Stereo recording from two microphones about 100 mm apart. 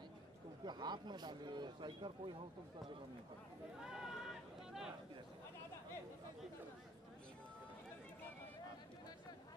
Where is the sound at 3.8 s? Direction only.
5° right (ahead or behind).